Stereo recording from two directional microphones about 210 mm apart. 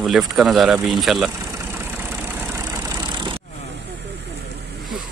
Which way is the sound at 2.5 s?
20° right (ahead or behind).